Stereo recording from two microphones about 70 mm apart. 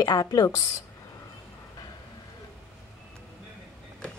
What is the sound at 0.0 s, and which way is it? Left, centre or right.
Speech, left.